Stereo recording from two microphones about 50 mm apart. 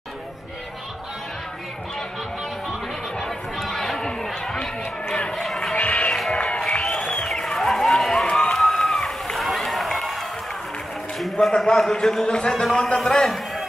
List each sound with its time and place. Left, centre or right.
3.2 s chatter: centre
5.2 s a sound: centre
5.8 s music: left
6.3 s music: centre
7.2 s a sound: centre
8.5 s run: centre
11.1 s a man's voice: centre
12.3 s speech: centre